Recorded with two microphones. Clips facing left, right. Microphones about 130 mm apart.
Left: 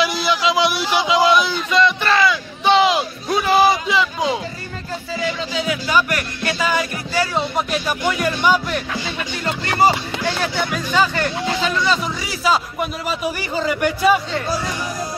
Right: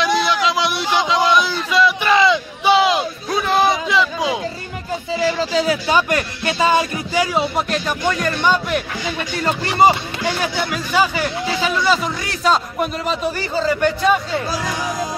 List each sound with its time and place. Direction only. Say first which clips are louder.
0.0 s a sound: right 1 dB; centre (ahead or behind)
2.1 s crowd: right 3 dB; 20° right (ahead or behind)
2.7 s a sound: even; centre (ahead or behind)
5.1 s music: right 6 dB; 35° right (ahead or behind)
7.5 s speech: right 1 dB; 5° left (ahead or behind)
9.8 s speech: right 2 dB; 15° right (ahead or behind); by 14.2 s 10° left (ahead or behind)